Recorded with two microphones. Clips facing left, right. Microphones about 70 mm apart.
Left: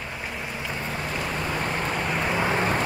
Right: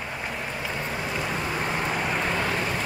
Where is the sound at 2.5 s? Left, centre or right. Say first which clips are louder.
Left 4 dB; left.